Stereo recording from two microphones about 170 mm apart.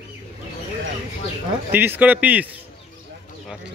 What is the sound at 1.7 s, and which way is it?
Speech, 10° right (ahead or behind).